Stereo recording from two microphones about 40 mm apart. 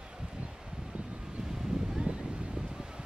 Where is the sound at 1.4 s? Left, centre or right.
Centre.